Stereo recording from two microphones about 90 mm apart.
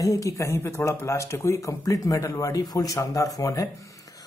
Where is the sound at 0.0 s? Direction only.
35° left (ahead or behind).